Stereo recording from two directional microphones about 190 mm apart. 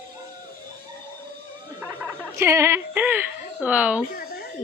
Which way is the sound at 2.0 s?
15° right (ahead or behind).